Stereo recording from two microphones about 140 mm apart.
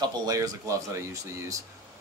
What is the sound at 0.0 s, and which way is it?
Speech, 25° right (ahead or behind).